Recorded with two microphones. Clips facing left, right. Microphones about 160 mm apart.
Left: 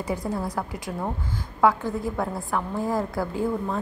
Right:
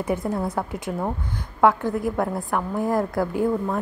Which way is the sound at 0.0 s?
20° right (ahead or behind).